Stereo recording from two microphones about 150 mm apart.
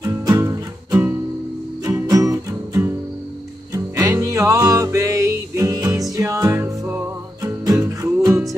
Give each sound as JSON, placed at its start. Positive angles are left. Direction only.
{"t": 0.0, "sound": "music", "side_deg": -25}